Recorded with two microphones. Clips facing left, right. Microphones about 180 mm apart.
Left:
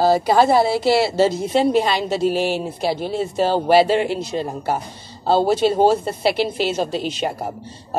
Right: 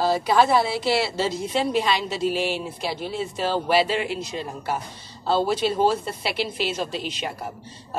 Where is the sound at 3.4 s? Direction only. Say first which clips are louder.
Left 6 dB; 30° left (ahead or behind).